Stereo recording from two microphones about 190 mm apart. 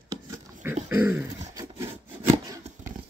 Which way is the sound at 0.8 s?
10° right (ahead or behind).